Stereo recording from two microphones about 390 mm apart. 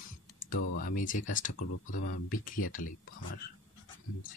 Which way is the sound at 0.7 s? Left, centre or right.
Left.